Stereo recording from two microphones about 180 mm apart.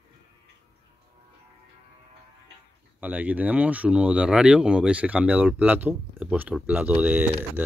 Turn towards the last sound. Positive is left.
turn(degrees=-10)  # may be behind; listen again after turning